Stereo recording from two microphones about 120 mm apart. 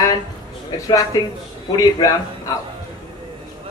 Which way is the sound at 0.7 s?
30° left (ahead or behind).